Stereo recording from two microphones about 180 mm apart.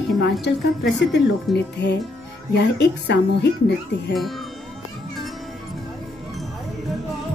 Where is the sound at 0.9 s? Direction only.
70° left (ahead or behind).